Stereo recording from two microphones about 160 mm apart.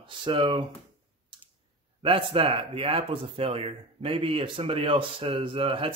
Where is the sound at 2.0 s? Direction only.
35° right (ahead or behind).